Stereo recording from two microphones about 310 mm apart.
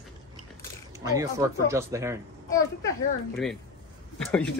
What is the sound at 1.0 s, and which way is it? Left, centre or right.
Speech, centre.